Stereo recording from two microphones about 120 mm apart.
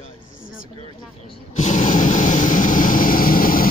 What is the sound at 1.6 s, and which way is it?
Vehicle, 90° left.